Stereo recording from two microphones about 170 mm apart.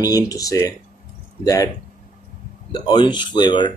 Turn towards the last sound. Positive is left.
turn(degrees=25)  # may be behind; listen again after turning